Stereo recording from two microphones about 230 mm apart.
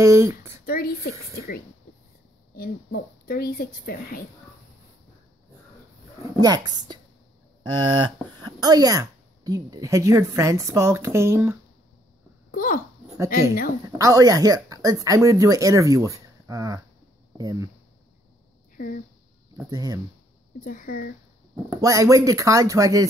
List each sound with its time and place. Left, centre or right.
0.0 s speech: centre
0.7 s a woman's voice: left
6.4 s speech: centre
12.4 s speech: left
13.9 s speech: centre
19.5 s speech: centre
20.6 s a woman's voice: left
21.6 s speech: centre